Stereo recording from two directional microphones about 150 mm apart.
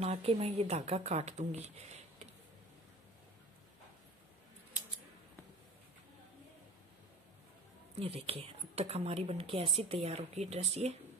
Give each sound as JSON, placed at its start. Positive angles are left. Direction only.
{"t": 0.0, "sound": "speech", "side_deg": -40}
{"t": 8.0, "sound": "speech", "side_deg": -40}